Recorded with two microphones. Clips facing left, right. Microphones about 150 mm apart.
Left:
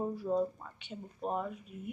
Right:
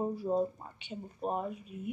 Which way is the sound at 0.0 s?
25° right (ahead or behind).